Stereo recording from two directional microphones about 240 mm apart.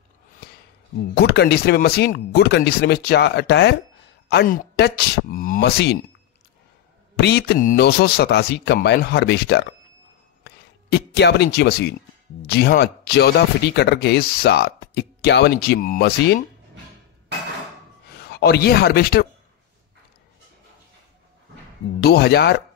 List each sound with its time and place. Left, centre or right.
1.1 s speech: left
7.2 s speech: left
10.4 s a sound: left
12.4 s speech: left
18.2 s speech: left
22.0 s speech: left